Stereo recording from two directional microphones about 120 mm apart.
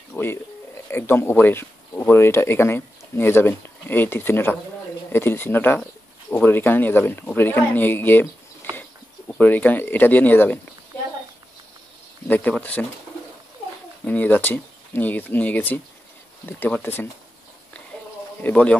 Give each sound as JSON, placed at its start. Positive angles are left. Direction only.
{"t": 0.1, "sound": "a sound", "side_deg": 20}
{"t": 0.8, "sound": "speech", "side_deg": 20}
{"t": 9.3, "sound": "speech", "side_deg": 15}
{"t": 12.3, "sound": "speech", "side_deg": 15}
{"t": 14.0, "sound": "speech", "side_deg": 15}
{"t": 18.4, "sound": "speech", "side_deg": 10}